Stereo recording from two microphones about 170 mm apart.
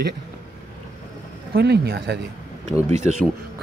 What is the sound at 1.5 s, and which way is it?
Speech, 70° right (ahead or behind).